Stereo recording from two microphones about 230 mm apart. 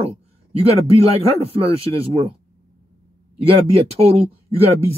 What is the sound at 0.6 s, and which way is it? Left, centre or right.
Speech, right.